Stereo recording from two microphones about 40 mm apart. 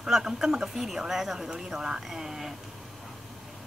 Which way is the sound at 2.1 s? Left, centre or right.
Centre.